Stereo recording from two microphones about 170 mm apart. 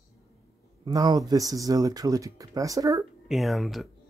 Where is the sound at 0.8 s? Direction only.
20° right (ahead or behind).